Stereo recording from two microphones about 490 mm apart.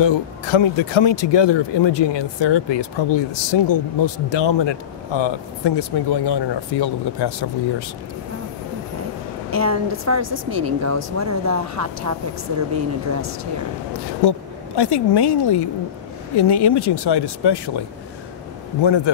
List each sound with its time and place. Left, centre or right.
0.0 s speech: left
9.5 s a woman's voice: right
14.2 s speech: left